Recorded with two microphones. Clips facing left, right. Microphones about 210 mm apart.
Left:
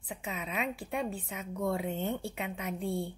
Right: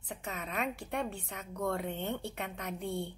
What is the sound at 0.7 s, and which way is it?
A woman's voice, 5° left (ahead or behind).